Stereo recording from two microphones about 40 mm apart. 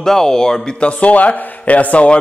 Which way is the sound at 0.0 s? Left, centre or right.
Centre.